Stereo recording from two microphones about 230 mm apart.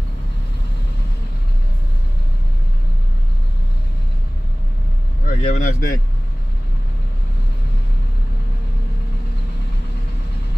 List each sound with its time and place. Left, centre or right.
5.2 s vehicle: left